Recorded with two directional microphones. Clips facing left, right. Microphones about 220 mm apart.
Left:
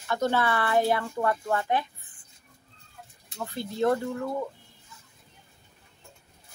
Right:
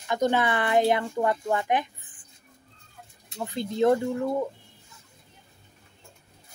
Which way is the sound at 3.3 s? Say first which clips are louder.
Right 4 dB; 15° right (ahead or behind).